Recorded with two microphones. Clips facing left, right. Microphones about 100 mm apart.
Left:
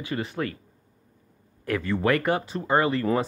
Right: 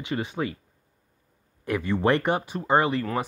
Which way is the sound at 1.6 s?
20° right (ahead or behind).